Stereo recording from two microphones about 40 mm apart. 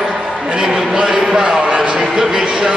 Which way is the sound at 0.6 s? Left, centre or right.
Centre.